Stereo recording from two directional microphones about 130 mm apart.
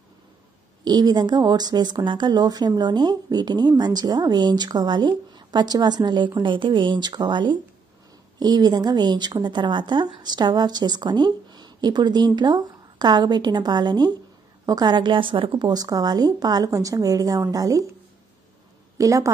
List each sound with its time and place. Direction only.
0.8 s speech: 30° right (ahead or behind)
18.9 s speech: 25° right (ahead or behind)